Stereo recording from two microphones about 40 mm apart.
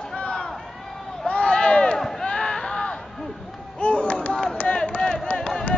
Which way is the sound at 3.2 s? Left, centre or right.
Centre.